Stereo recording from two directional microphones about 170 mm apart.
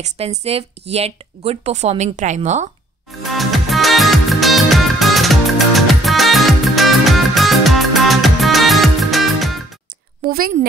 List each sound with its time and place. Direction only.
0.0 s speech: 40° right (ahead or behind)
3.3 s music: centre (ahead or behind)
10.2 s a woman's voice: 55° right (ahead or behind)